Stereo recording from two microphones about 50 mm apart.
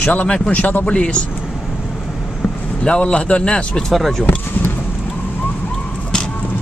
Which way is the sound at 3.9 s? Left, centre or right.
Centre.